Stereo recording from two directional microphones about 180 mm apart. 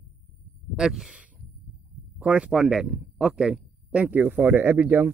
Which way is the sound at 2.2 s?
5° right (ahead or behind).